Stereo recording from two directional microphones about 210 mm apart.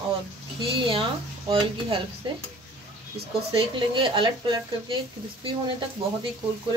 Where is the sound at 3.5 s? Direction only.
25° right (ahead or behind).